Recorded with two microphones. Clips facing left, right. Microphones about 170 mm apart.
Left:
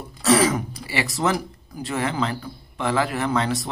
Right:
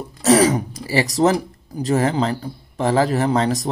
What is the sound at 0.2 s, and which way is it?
Speech, 40° right (ahead or behind).